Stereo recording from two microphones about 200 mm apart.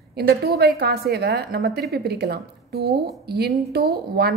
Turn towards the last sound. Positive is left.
turn(degrees=-50)  # may be behind; listen again after turning